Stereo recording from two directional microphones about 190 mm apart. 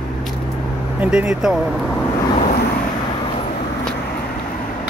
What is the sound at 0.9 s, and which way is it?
Speech, 5° right (ahead or behind).